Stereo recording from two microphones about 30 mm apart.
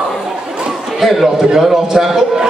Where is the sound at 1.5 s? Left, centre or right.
Centre.